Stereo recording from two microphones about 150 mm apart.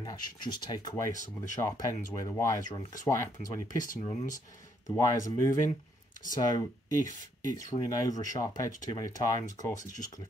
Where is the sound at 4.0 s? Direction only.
50° left (ahead or behind).